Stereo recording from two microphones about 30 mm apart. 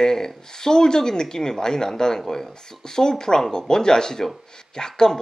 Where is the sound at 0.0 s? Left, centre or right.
Centre.